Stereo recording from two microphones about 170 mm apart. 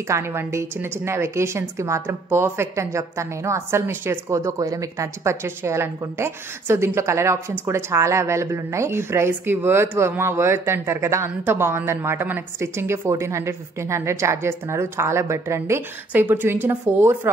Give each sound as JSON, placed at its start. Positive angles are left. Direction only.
{"t": 0.1, "sound": "a woman's voice", "side_deg": -15}